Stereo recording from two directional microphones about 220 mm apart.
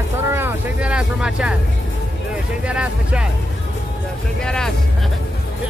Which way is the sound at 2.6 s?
5° right (ahead or behind).